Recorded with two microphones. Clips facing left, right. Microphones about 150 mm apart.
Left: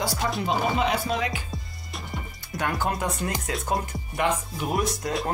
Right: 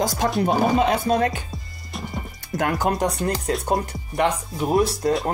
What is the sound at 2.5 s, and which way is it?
Speech, 50° right (ahead or behind).